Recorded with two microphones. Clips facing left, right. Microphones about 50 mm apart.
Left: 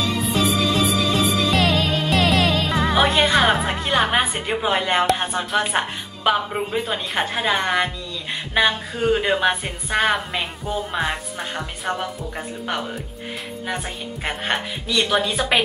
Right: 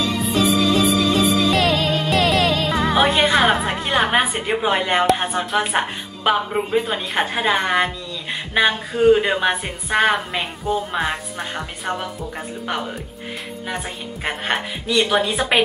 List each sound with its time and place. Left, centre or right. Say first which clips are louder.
0.0 s music: right 2 dB; centre
13.7 s a woman's voice: even; centre